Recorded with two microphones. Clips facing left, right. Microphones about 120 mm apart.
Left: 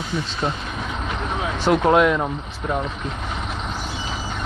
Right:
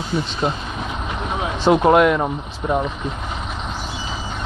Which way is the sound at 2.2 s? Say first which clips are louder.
Right 3 dB; 15° right (ahead or behind).